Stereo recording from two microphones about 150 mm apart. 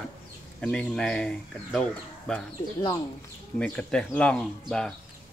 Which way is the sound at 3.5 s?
5° left (ahead or behind).